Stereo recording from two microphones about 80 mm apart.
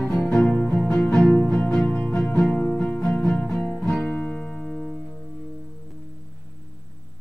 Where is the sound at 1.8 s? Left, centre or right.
Left.